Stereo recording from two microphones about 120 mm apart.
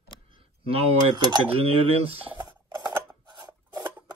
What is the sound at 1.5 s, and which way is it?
Speech, 55° right (ahead or behind).